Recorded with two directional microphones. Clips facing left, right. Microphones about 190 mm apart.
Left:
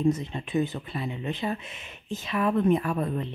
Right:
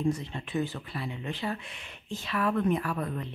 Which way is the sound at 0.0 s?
20° left (ahead or behind).